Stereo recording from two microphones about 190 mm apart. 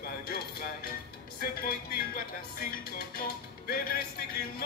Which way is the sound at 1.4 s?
50° left (ahead or behind).